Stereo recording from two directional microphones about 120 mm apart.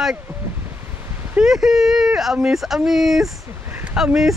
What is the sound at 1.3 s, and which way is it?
Speech, 5° right (ahead or behind).